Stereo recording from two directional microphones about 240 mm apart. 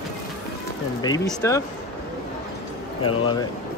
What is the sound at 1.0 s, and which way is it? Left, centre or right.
Speech, centre.